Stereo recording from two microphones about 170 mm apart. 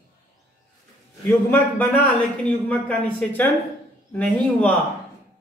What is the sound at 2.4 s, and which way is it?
A man's voice, 10° left (ahead or behind).